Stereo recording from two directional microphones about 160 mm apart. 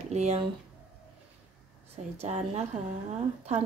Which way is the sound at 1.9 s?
40° right (ahead or behind).